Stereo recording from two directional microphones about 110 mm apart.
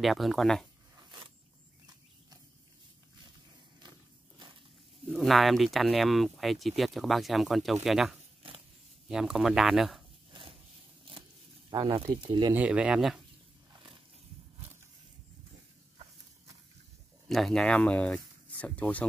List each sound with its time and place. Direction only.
0.0 s speech: centre (ahead or behind)
5.0 s speech: centre (ahead or behind)
10.3 s a sound: 55° right (ahead or behind)
11.7 s speech: 50° right (ahead or behind)
12.5 s speech: 10° right (ahead or behind)
17.3 s speech: centre (ahead or behind)